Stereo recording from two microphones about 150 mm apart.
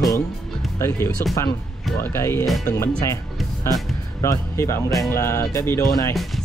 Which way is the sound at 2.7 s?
20° left (ahead or behind).